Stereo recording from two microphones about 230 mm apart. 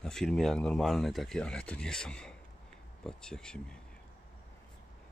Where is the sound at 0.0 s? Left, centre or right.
Centre.